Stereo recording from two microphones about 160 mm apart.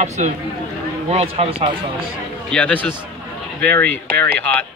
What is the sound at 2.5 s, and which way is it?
Speech, 10° left (ahead or behind).